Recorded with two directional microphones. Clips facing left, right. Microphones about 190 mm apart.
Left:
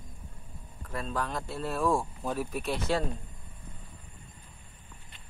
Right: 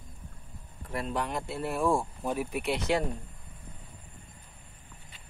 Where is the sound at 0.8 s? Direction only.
20° right (ahead or behind).